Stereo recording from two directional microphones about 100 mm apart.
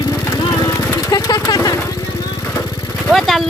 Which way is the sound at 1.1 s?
35° left (ahead or behind).